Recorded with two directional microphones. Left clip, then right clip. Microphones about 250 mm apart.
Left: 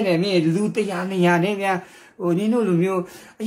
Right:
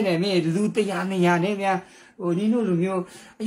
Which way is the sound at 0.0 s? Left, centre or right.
Centre.